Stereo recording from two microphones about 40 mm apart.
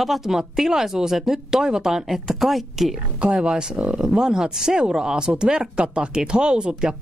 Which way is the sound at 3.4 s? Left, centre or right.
Centre.